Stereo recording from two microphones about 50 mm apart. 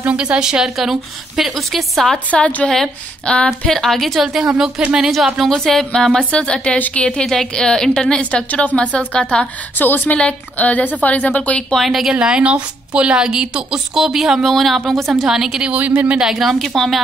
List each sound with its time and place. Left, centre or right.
0.0 s a woman's voice: right; by 2.1 s centre
2.3 s a woman's voice: left
2.7 s a woman's voice: centre
5.1 s a woman's voice: centre
9.8 s a woman's voice: left
10.1 s a woman's voice: left
12.1 s a woman's voice: centre
15.2 s a woman's voice: centre
15.7 s speech: right
16.2 s a woman's voice: centre